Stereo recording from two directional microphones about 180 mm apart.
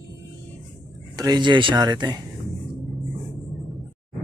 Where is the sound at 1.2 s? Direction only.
25° right (ahead or behind).